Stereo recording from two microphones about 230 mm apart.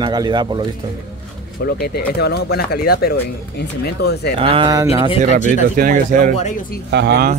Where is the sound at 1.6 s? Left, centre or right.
Left.